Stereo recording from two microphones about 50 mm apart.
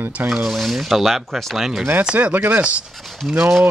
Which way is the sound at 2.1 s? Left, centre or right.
Right.